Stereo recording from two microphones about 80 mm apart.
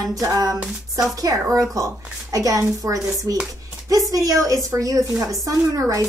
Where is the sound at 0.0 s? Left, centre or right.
Right.